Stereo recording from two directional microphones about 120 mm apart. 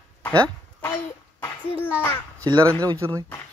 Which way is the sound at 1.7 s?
20° left (ahead or behind).